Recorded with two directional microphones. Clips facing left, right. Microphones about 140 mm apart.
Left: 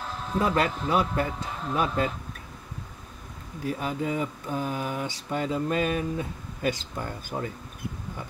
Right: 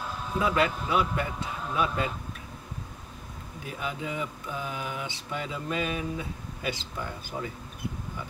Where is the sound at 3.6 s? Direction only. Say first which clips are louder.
Left 6 dB; 40° left (ahead or behind).